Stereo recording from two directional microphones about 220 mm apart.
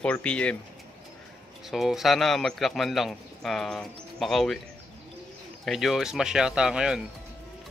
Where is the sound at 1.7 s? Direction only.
Centre (ahead or behind).